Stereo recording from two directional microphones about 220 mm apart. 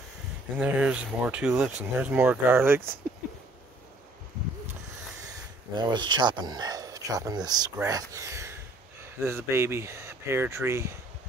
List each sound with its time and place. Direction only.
0.6 s speech: 5° right (ahead or behind)
5.8 s speech: 20° right (ahead or behind)